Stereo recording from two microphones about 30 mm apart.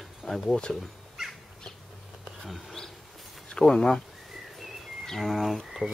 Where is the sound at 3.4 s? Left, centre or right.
Left.